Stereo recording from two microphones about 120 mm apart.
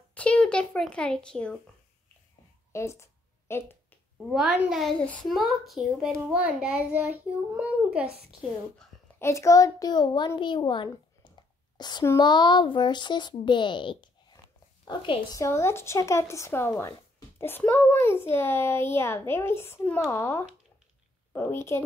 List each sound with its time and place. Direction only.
0.1 s speech: 10° left (ahead or behind)
2.7 s a sound: 25° left (ahead or behind)
4.2 s a child's voice: centre (ahead or behind)
9.2 s a child's voice: 25° left (ahead or behind); by 10.9 s 40° left (ahead or behind)
11.7 s a sound: 35° left (ahead or behind)
12.2 s a child's voice: 40° left (ahead or behind)
15.3 s a child's voice: 25° left (ahead or behind)